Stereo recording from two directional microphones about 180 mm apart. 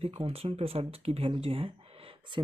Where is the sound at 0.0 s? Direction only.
35° right (ahead or behind).